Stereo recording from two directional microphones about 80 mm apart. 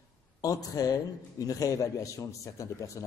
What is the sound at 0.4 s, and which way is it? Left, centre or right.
A man's voice, left.